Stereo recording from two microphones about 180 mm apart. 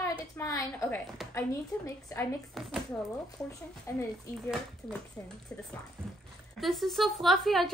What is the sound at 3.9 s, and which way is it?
Speech, 15° left (ahead or behind).